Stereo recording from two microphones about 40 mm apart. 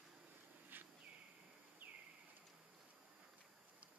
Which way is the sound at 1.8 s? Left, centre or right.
Right.